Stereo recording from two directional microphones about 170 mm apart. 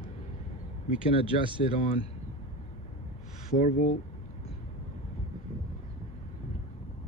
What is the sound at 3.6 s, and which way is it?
Speech, 45° left (ahead or behind).